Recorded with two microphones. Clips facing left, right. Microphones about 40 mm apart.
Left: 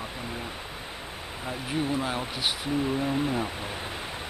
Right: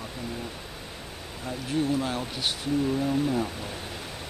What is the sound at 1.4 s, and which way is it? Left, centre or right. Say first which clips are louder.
Speech: right 2 dB; centre.